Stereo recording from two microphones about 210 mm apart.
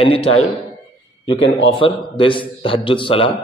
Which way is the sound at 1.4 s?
60° left (ahead or behind).